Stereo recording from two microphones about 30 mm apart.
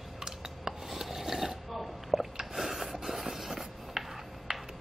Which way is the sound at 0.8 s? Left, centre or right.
Centre.